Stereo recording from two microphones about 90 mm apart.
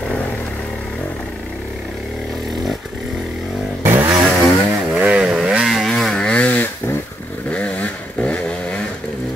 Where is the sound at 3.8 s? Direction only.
30° right (ahead or behind).